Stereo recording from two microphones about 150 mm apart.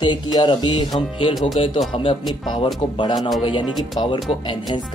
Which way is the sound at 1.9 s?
40° left (ahead or behind).